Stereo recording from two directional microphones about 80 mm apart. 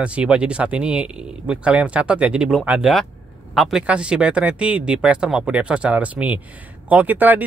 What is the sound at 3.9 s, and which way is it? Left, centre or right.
Speech, centre.